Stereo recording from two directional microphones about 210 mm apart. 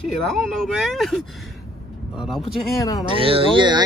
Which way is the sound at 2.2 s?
Centre (ahead or behind).